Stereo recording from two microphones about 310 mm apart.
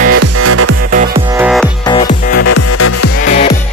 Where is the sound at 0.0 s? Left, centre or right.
Right.